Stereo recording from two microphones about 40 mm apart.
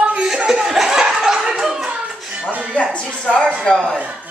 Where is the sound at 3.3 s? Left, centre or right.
Centre.